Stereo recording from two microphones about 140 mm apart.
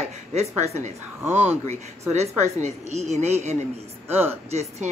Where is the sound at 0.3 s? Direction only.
50° right (ahead or behind).